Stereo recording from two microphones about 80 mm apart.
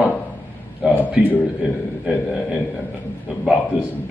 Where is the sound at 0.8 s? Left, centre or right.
Centre.